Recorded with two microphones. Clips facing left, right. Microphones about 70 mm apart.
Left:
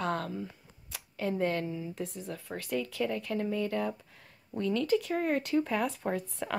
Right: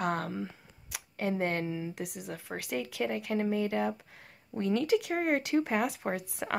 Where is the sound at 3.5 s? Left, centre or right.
Right.